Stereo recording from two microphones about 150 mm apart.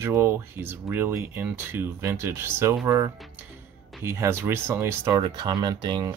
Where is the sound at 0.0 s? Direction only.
15° right (ahead or behind).